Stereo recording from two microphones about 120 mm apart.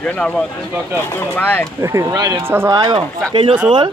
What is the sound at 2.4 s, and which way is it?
Speech, 20° right (ahead or behind).